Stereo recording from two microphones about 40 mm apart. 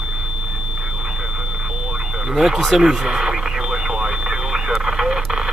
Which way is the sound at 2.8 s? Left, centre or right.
Centre.